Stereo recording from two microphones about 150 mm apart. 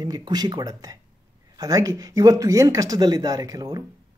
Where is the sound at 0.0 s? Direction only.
25° right (ahead or behind).